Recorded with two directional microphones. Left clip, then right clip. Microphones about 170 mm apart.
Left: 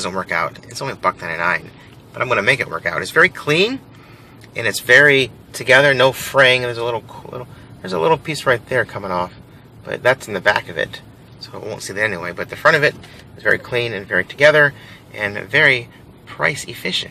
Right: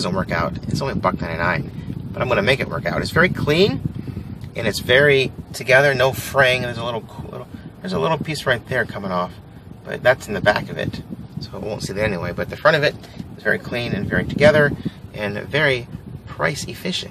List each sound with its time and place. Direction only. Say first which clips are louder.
0.0 s speech: left 2 dB; 10° right (ahead or behind)
5.0 s speech: left 3 dB; 15° left (ahead or behind)
11.6 s speech: left 2 dB; 10° right (ahead or behind)
13.4 s speech: left 4 dB; 20° left (ahead or behind)
15.1 s speech: left 5 dB; 10° right (ahead or behind)